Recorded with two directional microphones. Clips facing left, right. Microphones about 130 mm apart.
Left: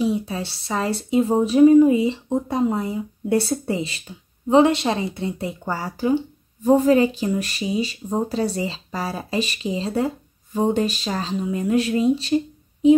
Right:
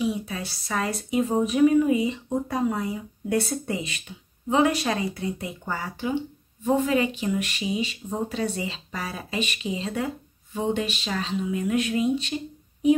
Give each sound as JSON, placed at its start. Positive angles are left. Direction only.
{"t": 0.0, "sound": "speech", "side_deg": 30}